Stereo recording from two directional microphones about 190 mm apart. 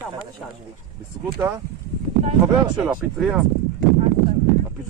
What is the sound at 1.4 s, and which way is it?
Speech, 15° right (ahead or behind).